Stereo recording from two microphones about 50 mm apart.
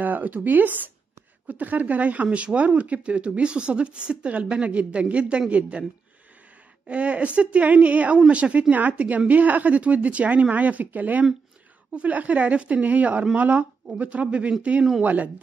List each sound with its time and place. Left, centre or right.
0.0 s speech: right
6.9 s speech: right